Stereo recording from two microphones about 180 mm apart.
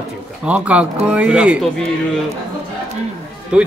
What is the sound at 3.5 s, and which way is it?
Speech, 5° right (ahead or behind).